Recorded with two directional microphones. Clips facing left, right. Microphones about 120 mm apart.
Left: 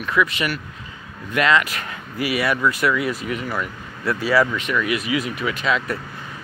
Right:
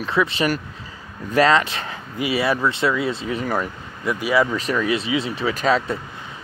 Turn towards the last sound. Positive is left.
turn(degrees=-35)  # may be behind; listen again after turning